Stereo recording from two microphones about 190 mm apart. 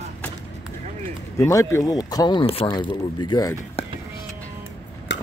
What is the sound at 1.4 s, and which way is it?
Speech, 15° left (ahead or behind).